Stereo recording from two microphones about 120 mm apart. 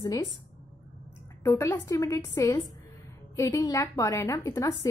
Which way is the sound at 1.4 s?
25° left (ahead or behind).